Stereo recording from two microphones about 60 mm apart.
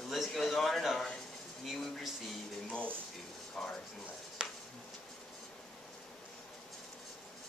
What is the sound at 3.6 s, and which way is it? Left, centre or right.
Speech, centre.